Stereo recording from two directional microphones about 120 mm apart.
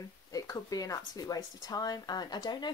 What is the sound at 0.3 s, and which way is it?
Speech, 30° left (ahead or behind).